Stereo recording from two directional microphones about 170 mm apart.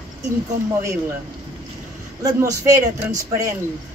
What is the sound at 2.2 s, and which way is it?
A man's voice, 20° right (ahead or behind).